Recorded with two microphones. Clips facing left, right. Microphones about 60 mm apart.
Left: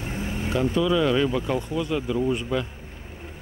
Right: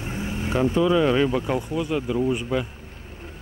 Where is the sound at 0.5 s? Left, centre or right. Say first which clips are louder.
Right 2 dB; right.